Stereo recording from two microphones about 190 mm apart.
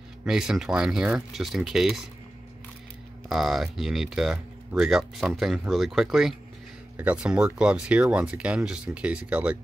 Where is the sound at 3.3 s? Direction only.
Centre (ahead or behind).